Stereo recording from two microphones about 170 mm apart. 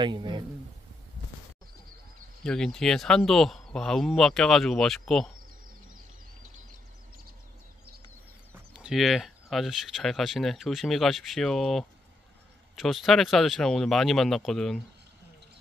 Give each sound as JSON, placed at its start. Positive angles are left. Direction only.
{"t": 0.0, "sound": "a man's voice", "side_deg": -25}
{"t": 2.4, "sound": "speech", "side_deg": 5}
{"t": 8.7, "sound": "speech", "side_deg": -5}